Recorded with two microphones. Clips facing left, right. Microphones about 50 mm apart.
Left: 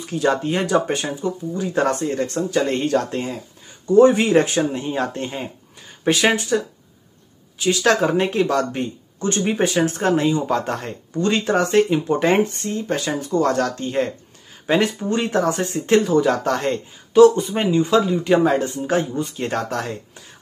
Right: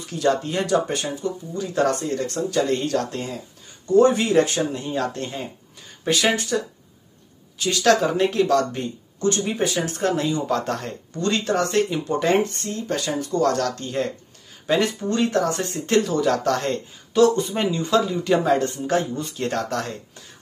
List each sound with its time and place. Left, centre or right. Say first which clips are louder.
0.0 s speech: left 2 dB; left
11.9 s speech: left 3 dB; left